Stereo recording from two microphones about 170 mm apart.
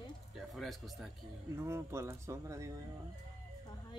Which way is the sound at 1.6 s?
15° right (ahead or behind).